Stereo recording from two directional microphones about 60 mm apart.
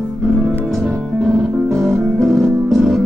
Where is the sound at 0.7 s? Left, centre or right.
Centre.